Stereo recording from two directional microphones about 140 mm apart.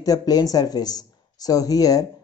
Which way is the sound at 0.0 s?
25° left (ahead or behind).